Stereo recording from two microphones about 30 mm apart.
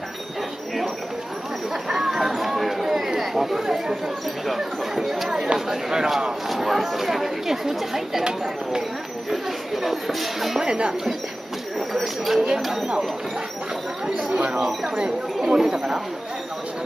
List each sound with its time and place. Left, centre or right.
1.7 s a sound: centre
3.2 s chatter: centre
4.6 s speech: centre
8.2 s speech: right
9.3 s speech: centre
10.6 s speech: right
11.9 s speech: centre
12.4 s speech: right
14.3 s speech: right
15.5 s speech: centre